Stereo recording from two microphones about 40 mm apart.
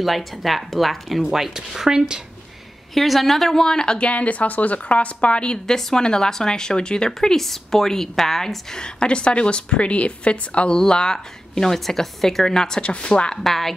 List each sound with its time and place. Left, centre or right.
0.0 s a woman's voice: centre
2.9 s a woman's voice: centre; by 4.1 s left
4.1 s a woman's voice: left
5.7 s speech: centre
8.7 s a woman's voice: left
10.8 s speech: centre
12.8 s a woman's voice: left
13.4 s speech: centre